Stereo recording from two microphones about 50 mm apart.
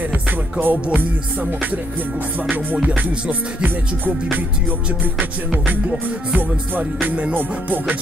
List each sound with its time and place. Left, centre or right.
0.1 s music: right
3.0 s music: right
5.5 s music: right